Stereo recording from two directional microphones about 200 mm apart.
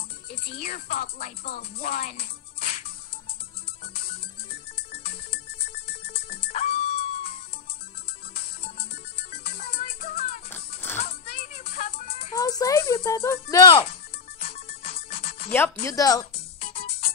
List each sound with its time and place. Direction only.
0.3 s speech: 50° left (ahead or behind)
1.2 s music: 45° left (ahead or behind)
3.8 s music: 45° left (ahead or behind)
5.3 s ringtone: 50° left (ahead or behind)
6.5 s music: 30° left (ahead or behind)
9.7 s music: 45° left (ahead or behind)
10.5 s music: 10° left (ahead or behind)
11.1 s music: 50° left (ahead or behind)
12.4 s music: 15° left (ahead or behind)
15.2 s music: 50° left (ahead or behind)
15.8 s speech: 15° left (ahead or behind)
16.3 s music: 30° left (ahead or behind)